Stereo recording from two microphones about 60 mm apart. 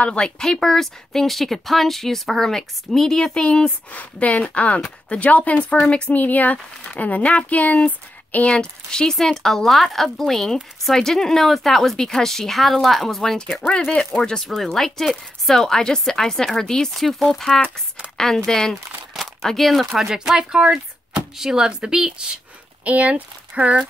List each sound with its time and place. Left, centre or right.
0.0 s speech: centre
3.9 s speech: left
6.1 s speech: left; by 13.4 s centre
13.7 s speech: centre
14.3 s speech: centre
22.8 s speech: right